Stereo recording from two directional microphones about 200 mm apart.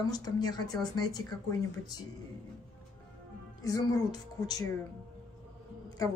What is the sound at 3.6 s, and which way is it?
Speech, 20° left (ahead or behind).